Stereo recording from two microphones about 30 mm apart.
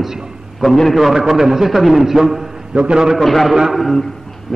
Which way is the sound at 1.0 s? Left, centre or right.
Centre.